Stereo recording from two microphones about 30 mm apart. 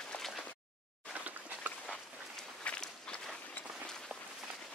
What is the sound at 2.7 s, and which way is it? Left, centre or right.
Walk, left.